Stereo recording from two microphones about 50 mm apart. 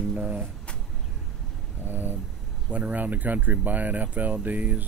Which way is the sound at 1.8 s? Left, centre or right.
Right.